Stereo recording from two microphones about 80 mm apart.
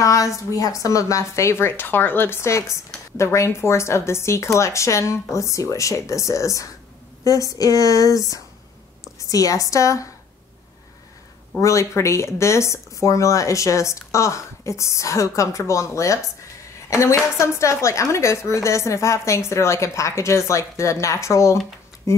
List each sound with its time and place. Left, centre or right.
0.0 s a woman's voice: left
11.6 s speech: left